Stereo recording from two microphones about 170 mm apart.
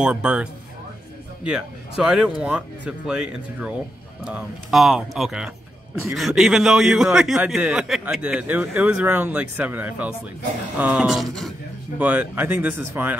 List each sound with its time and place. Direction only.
0.0 s a man's voice: 5° right (ahead or behind)
12.0 s speech: 10° right (ahead or behind)